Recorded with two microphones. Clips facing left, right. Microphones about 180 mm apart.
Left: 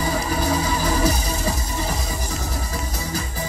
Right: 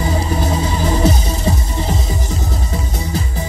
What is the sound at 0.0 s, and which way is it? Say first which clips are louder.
Music: right 3 dB; 25° right (ahead or behind).